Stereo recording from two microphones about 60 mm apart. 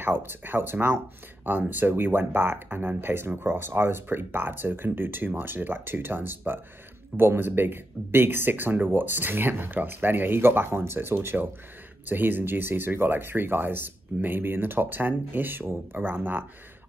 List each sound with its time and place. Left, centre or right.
0.0 s speech: right